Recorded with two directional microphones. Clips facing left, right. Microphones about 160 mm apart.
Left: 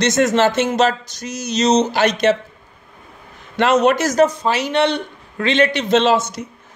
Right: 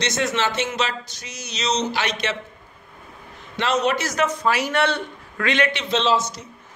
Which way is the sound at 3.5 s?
50° left (ahead or behind).